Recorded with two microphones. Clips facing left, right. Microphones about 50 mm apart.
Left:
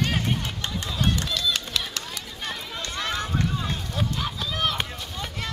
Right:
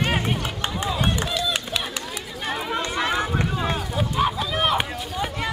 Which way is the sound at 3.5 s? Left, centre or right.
Right.